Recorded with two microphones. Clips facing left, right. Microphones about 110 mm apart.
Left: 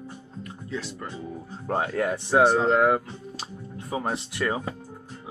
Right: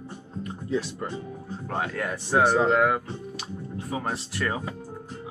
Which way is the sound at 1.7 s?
30° left (ahead or behind).